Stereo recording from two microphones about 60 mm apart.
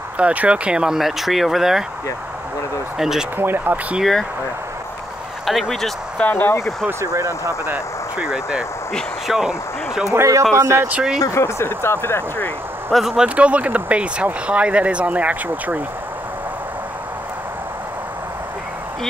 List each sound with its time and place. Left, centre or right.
0.2 s speech: right
0.9 s speech: centre
3.0 s speech: centre
3.3 s speech: right
4.0 s speech: centre
5.5 s speech: centre
6.1 s speech: left
6.9 s speech: right
8.2 s speech: centre
10.5 s speech: right
10.9 s speech: centre
11.2 s speech: left
12.9 s speech: centre
13.4 s speech: right